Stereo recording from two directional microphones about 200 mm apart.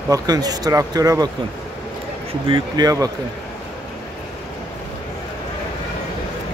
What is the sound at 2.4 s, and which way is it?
Speech, 20° right (ahead or behind).